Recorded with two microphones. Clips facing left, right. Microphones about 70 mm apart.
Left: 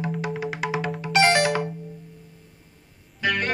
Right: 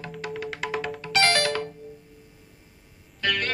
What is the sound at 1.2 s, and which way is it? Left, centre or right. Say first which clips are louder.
Music: left 4 dB; left.